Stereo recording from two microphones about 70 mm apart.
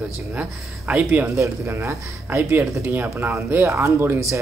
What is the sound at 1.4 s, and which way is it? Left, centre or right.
Speech, right.